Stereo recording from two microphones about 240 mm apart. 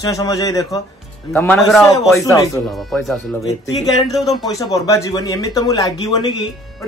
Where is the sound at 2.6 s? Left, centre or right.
Centre.